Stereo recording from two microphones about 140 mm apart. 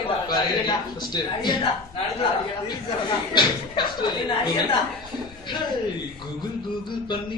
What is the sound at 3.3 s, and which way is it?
Speech, 35° left (ahead or behind).